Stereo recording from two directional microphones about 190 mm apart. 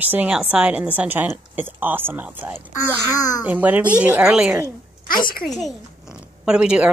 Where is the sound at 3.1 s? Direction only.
20° left (ahead or behind).